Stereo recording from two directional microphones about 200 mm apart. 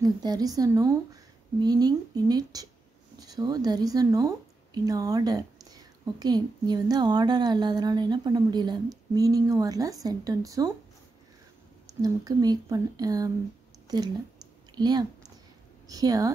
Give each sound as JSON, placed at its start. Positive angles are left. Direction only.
{"t": 0.0, "sound": "a woman's voice", "side_deg": -20}
{"t": 12.0, "sound": "a woman's voice", "side_deg": -20}